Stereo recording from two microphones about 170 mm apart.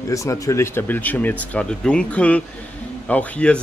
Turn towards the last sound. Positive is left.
turn(degrees=5)  # may be behind; listen again after turning